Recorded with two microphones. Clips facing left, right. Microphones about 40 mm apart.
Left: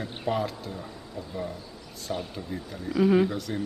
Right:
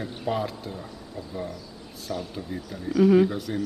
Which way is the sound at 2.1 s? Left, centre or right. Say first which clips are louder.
Even; left.